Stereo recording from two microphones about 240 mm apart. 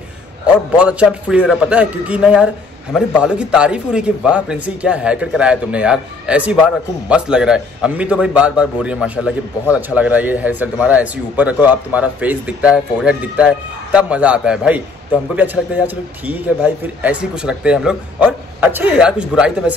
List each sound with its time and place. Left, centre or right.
0.7 s a man's voice: centre